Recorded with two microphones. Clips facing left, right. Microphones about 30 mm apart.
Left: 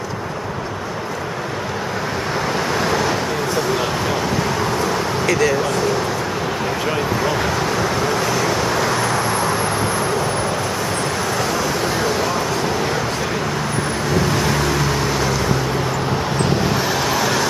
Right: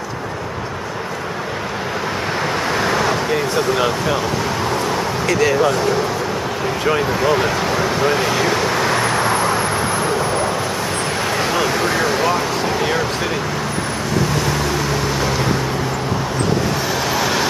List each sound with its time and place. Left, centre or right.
2.7 s vehicle: centre
3.7 s a sound: right
5.2 s vehicle: centre
7.2 s speech: centre
8.1 s vehicle: right
11.8 s vehicle: right
12.6 s a sound: centre
14.4 s vehicle: centre
17.1 s vehicle: centre